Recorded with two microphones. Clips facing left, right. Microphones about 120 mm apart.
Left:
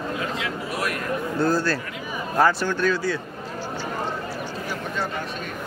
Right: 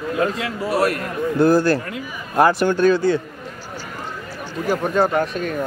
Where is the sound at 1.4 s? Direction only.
15° right (ahead or behind).